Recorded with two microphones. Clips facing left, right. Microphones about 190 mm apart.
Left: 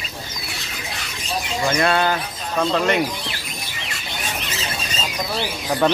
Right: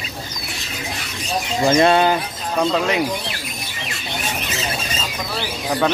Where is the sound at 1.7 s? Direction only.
25° right (ahead or behind).